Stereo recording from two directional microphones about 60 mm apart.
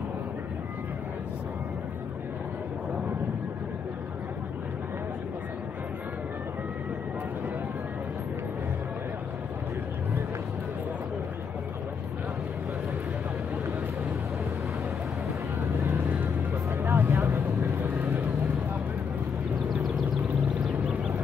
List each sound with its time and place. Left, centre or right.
16.8 s vehicle: right